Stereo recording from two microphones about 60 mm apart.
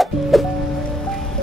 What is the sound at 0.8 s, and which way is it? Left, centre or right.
Music, centre.